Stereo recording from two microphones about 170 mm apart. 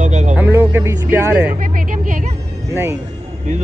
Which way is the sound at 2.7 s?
15° right (ahead or behind).